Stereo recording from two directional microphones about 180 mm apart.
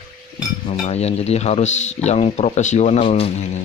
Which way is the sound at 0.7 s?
35° left (ahead or behind).